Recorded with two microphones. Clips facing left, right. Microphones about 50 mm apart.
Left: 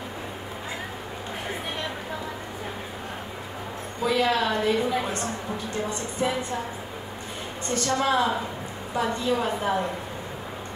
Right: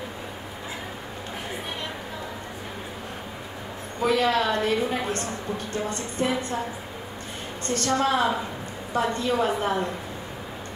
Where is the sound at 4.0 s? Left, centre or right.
Right.